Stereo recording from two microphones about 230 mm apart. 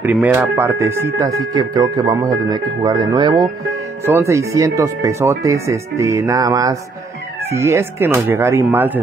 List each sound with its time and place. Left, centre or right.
0.0 s speech: centre